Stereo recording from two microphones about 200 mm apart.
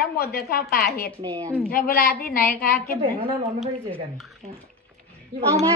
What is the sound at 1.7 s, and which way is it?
A woman's voice, 45° left (ahead or behind).